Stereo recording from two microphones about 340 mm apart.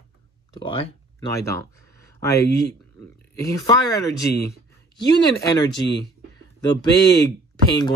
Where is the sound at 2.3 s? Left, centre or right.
Left.